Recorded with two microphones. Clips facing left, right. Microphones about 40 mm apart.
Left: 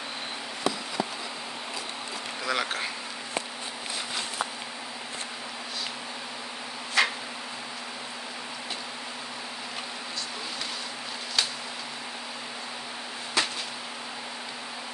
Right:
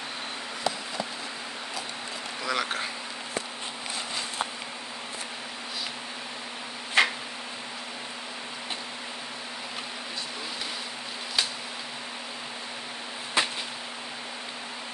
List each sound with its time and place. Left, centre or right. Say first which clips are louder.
2.4 s speech: even; centre
7.0 s tick-tock: right 2 dB; right
13.4 s a sound: right 1 dB; right